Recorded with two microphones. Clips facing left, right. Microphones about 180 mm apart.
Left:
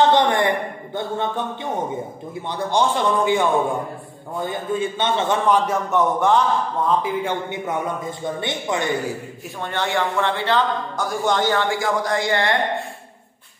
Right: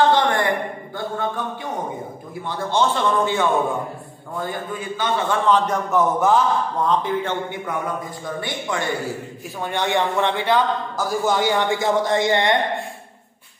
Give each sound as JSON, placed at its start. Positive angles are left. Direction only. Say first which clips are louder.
{"t": 0.1, "sound": "a sound", "louder": "left 1 dB", "side_deg": 20}
{"t": 0.9, "sound": "a man's voice", "louder": "left 2 dB", "side_deg": 20}
{"t": 5.5, "sound": "a man's voice", "louder": "right 2 dB", "side_deg": 5}
{"t": 7.4, "sound": "a man's voice", "louder": "left 1 dB", "side_deg": 20}
{"t": 9.6, "sound": "a man's voice", "louder": "right 2 dB", "side_deg": -15}
{"t": 11.0, "sound": "a man's voice", "louder": "even", "side_deg": -5}